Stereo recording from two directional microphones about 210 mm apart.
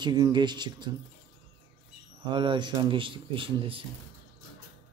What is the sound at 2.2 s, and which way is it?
Speech, 20° right (ahead or behind).